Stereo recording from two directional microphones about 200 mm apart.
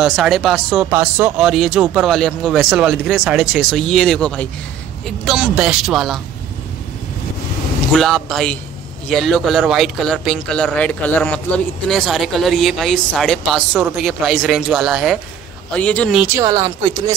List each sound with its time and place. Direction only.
0.0 s speech: centre (ahead or behind)
0.8 s speech: 10° right (ahead or behind)
1.5 s speech: centre (ahead or behind)
7.9 s a man's voice: centre (ahead or behind)
16.2 s a woman's voice: 15° right (ahead or behind)